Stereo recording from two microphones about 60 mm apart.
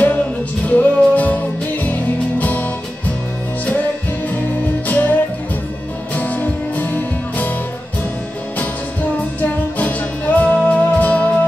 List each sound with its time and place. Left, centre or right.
0.7 s music: left
4.8 s music: left
6.1 s music: left
8.5 s music: left